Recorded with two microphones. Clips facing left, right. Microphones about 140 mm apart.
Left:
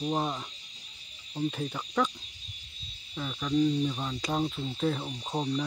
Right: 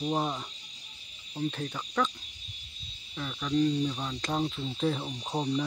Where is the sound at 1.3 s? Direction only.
5° left (ahead or behind).